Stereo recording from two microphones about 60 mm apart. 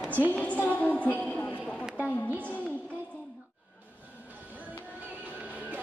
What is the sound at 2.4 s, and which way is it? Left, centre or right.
Music, left.